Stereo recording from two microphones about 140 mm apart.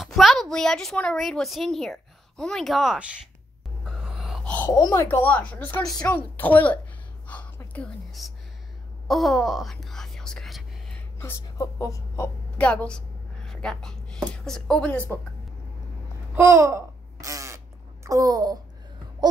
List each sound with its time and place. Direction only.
0.0 s a woman's voice: centre (ahead or behind)
3.8 s a sound: centre (ahead or behind)
4.5 s speech: 15° left (ahead or behind)
4.7 s speech: 25° left (ahead or behind)
5.0 s speech: 15° left (ahead or behind)
7.2 s a sound: 10° left (ahead or behind)
9.0 s whispering: centre (ahead or behind)
11.1 s speech: 20° left (ahead or behind)
12.5 s a woman's voice: 10° left (ahead or behind)
16.3 s babbling: 20° right (ahead or behind)
18.0 s a child's voice: 25° right (ahead or behind)